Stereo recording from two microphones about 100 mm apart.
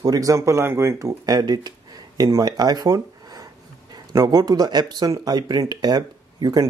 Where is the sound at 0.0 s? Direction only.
35° right (ahead or behind).